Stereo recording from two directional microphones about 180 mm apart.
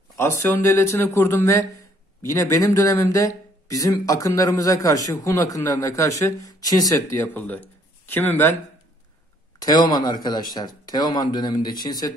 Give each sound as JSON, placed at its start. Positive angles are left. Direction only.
{"t": 0.6, "sound": "speech", "side_deg": 15}
{"t": 9.6, "sound": "speech", "side_deg": 20}